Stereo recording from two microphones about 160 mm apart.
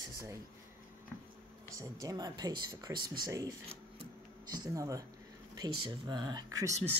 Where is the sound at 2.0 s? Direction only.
25° right (ahead or behind).